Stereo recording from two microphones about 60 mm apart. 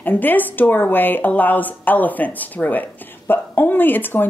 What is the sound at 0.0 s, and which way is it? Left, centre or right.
A woman's voice, left.